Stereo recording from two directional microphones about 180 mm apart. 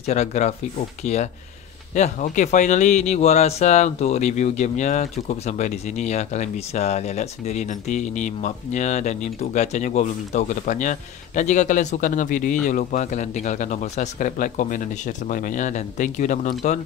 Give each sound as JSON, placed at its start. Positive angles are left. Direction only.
{"t": 0.0, "sound": "speech", "side_deg": 40}